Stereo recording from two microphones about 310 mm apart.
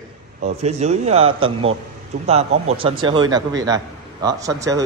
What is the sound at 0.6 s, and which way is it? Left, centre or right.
A man's voice, right.